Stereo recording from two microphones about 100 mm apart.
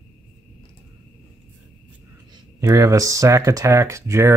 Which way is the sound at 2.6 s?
35° right (ahead or behind).